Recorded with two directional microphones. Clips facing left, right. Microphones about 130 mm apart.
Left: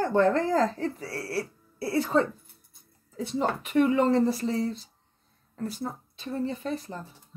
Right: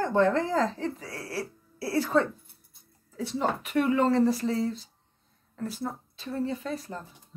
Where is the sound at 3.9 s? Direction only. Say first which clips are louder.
Even; 25° left (ahead or behind).